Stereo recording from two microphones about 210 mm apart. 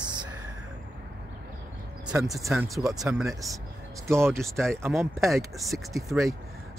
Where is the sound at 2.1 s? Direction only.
Centre (ahead or behind).